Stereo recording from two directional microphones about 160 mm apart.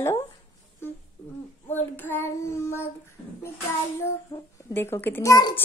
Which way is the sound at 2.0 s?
15° left (ahead or behind).